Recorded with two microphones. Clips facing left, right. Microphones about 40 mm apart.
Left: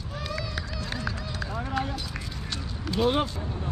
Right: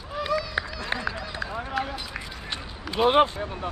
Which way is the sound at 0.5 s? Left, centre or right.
Right.